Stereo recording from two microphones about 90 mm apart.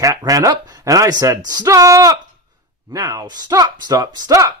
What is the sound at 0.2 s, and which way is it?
Speech, 40° right (ahead or behind).